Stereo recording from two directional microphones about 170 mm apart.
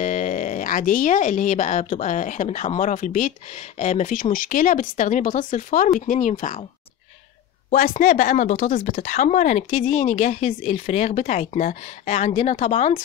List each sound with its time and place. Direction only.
0.0 s speech: 45° left (ahead or behind)
8.0 s speech: 55° left (ahead or behind)